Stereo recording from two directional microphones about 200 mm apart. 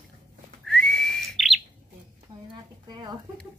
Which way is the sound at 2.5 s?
20° right (ahead or behind).